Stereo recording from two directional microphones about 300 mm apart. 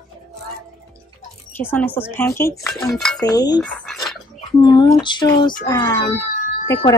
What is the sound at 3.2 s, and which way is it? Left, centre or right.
Speech, centre.